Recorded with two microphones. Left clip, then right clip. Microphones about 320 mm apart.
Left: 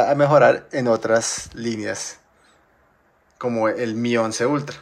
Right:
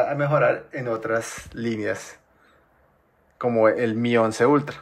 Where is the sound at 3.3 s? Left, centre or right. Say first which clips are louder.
Right 2 dB; centre.